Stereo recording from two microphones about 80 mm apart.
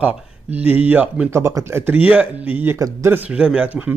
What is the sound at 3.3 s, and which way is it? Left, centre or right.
Speech, centre.